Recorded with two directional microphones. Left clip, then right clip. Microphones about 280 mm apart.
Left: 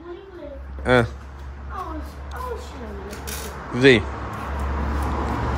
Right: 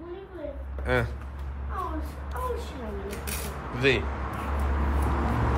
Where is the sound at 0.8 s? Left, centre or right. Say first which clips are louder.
Left 9 dB; left.